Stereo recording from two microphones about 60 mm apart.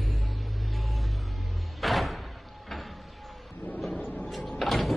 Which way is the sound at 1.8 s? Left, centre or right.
Centre.